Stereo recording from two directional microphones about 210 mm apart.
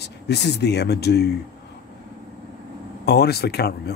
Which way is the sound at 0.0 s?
50° left (ahead or behind).